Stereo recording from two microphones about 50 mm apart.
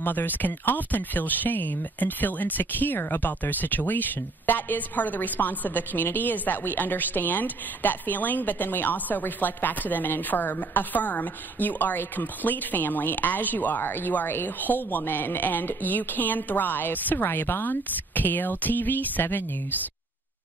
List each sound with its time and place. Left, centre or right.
0.0 s a woman's voice: left